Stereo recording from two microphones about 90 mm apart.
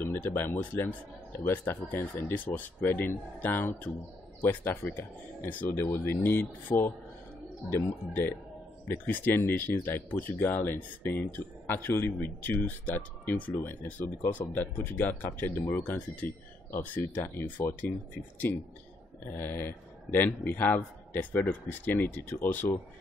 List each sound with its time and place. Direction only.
0.0 s speech: 25° left (ahead or behind)
1.7 s a man's voice: 25° left (ahead or behind)